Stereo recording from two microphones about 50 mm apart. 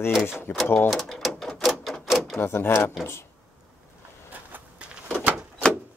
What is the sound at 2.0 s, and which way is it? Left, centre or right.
Drawer open or close, centre.